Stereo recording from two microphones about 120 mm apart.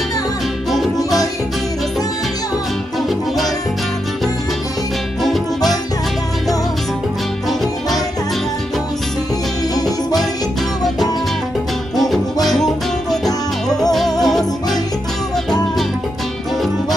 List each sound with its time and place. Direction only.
9.8 s music: 30° left (ahead or behind)
12.0 s music: centre (ahead or behind)
14.2 s jingle bell: centre (ahead or behind)